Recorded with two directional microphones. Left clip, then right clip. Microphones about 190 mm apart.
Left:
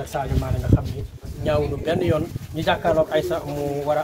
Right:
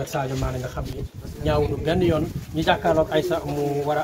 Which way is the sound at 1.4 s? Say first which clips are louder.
Even; 30° left (ahead or behind).